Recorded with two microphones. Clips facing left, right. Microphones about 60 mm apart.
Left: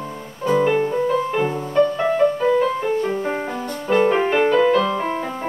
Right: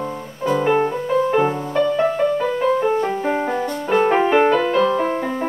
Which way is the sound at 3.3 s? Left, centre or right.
Centre.